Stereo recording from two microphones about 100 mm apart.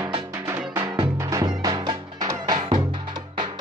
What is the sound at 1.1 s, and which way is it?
Music, 35° right (ahead or behind).